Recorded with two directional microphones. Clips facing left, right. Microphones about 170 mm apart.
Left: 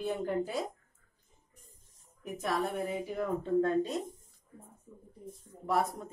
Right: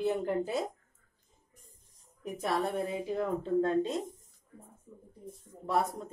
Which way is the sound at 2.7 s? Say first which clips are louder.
Right 2 dB; 30° right (ahead or behind).